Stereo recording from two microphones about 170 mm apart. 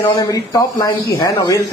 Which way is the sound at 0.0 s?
20° left (ahead or behind).